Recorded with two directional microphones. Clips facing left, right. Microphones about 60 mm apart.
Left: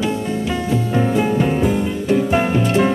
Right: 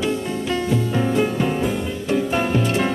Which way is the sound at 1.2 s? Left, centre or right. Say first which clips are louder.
Left 3 dB; centre.